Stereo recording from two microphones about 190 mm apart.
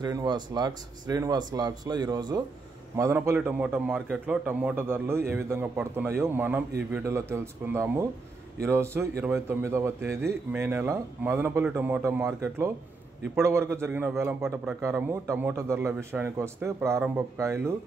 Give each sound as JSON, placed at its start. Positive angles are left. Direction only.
{"t": 0.0, "sound": "a man's voice", "side_deg": -20}